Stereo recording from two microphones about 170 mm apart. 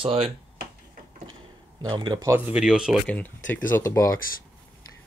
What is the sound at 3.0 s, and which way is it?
Speech, 10° left (ahead or behind).